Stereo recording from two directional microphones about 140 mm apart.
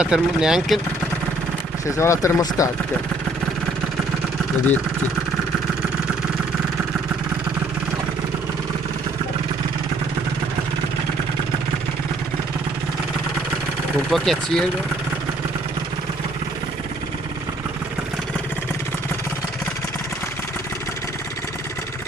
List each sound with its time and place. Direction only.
0.0 s speech: 5° right (ahead or behind)
1.9 s speech: 20° left (ahead or behind)
14.1 s speech: centre (ahead or behind)